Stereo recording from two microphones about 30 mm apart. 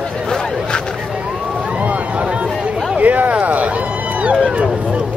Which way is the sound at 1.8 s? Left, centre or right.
Right.